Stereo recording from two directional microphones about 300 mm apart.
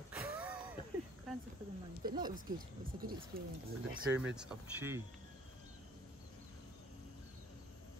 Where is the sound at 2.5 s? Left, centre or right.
Right.